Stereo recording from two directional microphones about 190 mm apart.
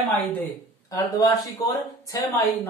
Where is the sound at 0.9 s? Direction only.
20° left (ahead or behind).